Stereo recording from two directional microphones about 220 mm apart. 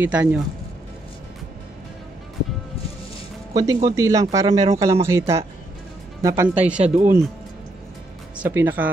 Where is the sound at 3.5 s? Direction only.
15° right (ahead or behind).